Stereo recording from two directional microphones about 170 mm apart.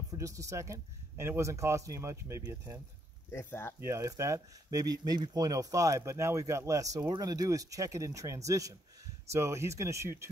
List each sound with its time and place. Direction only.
0.2 s speech: 20° right (ahead or behind)
3.3 s speech: 15° left (ahead or behind)
3.8 s speech: 15° right (ahead or behind)